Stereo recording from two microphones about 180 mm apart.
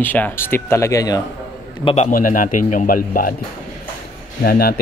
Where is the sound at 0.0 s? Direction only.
10° left (ahead or behind).